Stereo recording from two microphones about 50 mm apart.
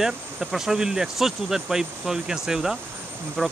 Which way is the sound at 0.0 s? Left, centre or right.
Centre.